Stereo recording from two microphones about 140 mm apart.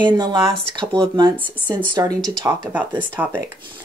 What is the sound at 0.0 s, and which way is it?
Speech, 30° right (ahead or behind).